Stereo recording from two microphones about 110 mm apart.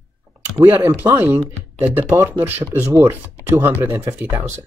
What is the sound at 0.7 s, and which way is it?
Speech, 15° right (ahead or behind).